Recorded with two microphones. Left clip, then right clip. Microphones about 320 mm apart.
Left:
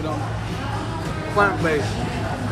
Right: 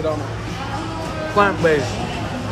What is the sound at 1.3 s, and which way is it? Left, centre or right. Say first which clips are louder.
Speech: right 3 dB; right.